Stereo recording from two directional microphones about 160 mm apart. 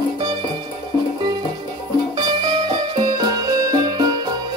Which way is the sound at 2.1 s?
25° right (ahead or behind).